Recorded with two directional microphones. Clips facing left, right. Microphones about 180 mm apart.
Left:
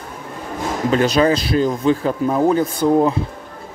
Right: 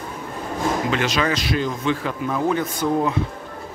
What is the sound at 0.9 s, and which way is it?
Speech, 40° left (ahead or behind).